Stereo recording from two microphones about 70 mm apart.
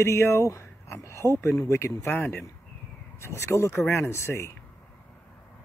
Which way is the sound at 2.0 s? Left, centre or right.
Left.